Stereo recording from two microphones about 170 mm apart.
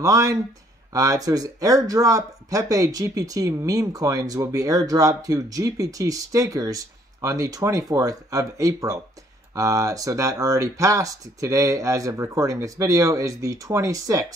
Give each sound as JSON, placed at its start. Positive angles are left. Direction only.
{"t": 0.0, "sound": "speech", "side_deg": -20}